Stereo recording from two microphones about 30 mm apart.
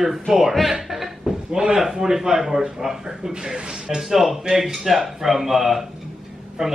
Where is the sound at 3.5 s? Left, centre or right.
Right.